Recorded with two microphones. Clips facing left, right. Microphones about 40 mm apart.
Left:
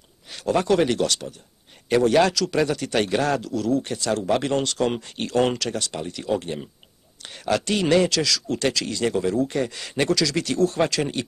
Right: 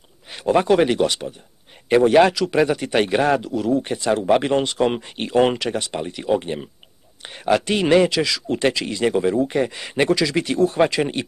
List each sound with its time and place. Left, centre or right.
0.3 s speech: right